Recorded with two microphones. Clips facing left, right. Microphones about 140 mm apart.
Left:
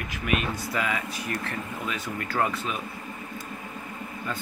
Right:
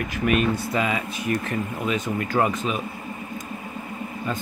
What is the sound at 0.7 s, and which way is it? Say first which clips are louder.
Speech: right 4 dB; 25° right (ahead or behind).